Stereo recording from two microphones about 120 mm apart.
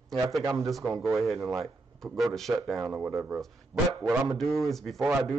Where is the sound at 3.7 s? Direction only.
20° right (ahead or behind).